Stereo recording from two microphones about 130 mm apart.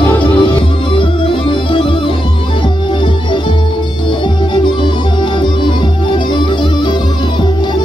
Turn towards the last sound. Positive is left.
turn(degrees=40)  # may be behind; listen again after turning